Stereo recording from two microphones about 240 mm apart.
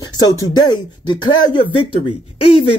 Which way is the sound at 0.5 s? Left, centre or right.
Centre.